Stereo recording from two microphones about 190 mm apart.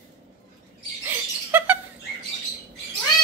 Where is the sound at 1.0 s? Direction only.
10° right (ahead or behind).